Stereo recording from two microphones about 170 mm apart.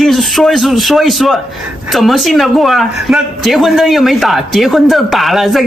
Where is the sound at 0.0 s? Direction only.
Centre (ahead or behind).